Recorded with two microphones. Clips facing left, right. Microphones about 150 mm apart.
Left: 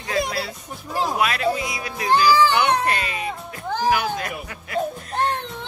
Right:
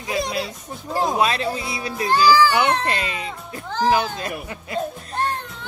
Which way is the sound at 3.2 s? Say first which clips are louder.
Left 2 dB; 20° left (ahead or behind).